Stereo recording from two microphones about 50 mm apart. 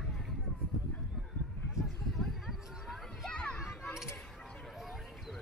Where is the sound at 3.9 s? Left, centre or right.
Centre.